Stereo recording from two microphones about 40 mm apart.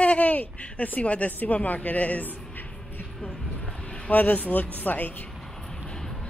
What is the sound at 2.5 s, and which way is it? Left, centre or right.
Music, left.